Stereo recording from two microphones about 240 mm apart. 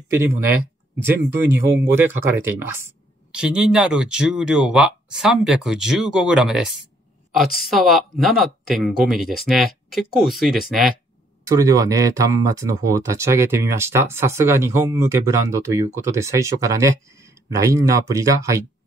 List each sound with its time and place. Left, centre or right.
0.2 s speech: centre
11.4 s speech: centre